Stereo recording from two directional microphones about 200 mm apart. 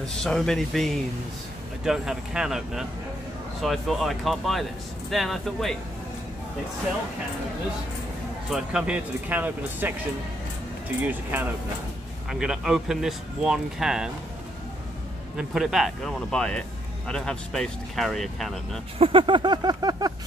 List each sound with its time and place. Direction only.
0.2 s speech: centre (ahead or behind)
1.9 s speech: 5° right (ahead or behind)
8.5 s speech: 5° right (ahead or behind)
11.0 s speech: 10° right (ahead or behind)
15.3 s speech: centre (ahead or behind)
18.9 s a sound: 25° right (ahead or behind)